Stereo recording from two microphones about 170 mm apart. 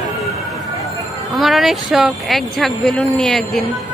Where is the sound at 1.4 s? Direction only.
Centre (ahead or behind).